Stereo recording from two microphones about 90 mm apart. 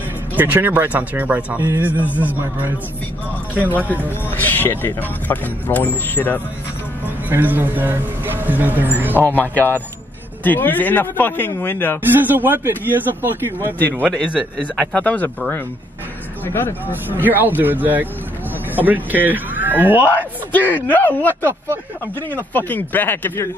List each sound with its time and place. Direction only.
0.4 s speech: 20° right (ahead or behind)
4.3 s speech: 20° left (ahead or behind)
7.2 s speech: 20° right (ahead or behind)
9.3 s speech: 20° left (ahead or behind)
12.1 s speech: 20° right (ahead or behind)
14.1 s a man's voice: 15° left (ahead or behind)
16.4 s speech: 25° left (ahead or behind)
16.9 s speech: 20° right (ahead or behind)
20.5 s speech: 20° left (ahead or behind)